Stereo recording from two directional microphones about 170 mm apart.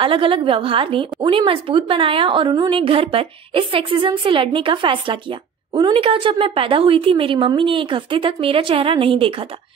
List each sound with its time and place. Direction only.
0.0 s a woman's voice: 30° right (ahead or behind)